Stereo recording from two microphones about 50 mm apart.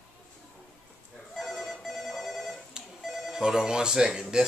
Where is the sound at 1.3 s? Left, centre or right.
Centre.